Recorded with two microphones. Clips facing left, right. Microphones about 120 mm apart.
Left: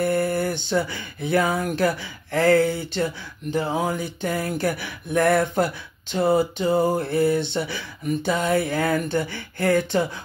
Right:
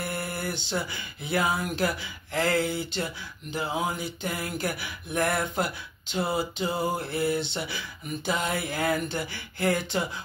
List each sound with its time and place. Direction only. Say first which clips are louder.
0.0 s speech: left 11 dB; 45° left (ahead or behind)